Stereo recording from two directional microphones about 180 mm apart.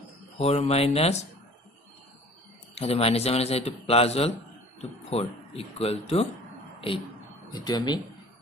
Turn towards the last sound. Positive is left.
turn(degrees=25)  # may be behind; listen again after turning